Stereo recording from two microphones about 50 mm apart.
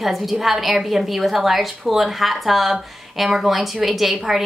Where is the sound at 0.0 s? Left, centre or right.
Centre.